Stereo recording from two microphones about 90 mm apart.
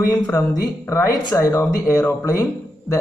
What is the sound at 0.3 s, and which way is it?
A man's voice, 25° left (ahead or behind).